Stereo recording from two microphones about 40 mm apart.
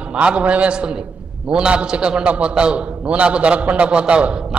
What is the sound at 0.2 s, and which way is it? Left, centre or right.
A man's voice, right.